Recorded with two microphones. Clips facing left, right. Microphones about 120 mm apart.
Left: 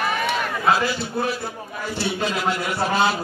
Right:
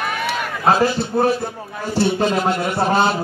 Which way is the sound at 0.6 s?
40° right (ahead or behind).